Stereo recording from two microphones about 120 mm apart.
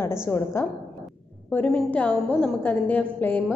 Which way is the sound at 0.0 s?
20° left (ahead or behind).